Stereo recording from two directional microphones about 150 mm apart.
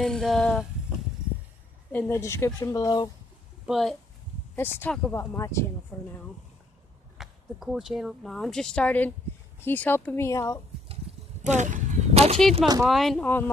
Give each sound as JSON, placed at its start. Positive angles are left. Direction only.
{"t": 0.0, "sound": "speech", "side_deg": 0}
{"t": 1.9, "sound": "speech", "side_deg": 15}
{"t": 3.6, "sound": "speech", "side_deg": 0}
{"t": 4.6, "sound": "speech", "side_deg": 15}
{"t": 7.2, "sound": "speech", "side_deg": -5}
{"t": 11.1, "sound": "a sound", "side_deg": -40}
{"t": 11.4, "sound": "speech", "side_deg": -55}
{"t": 12.8, "sound": "speech", "side_deg": 0}